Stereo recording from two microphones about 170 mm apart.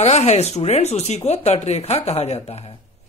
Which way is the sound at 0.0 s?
40° left (ahead or behind).